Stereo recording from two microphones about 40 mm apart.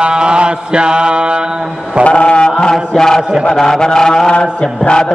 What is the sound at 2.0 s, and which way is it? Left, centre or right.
Chant, left.